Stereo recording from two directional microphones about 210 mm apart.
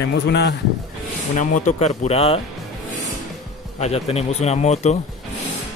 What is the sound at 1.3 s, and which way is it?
Speech, 35° left (ahead or behind).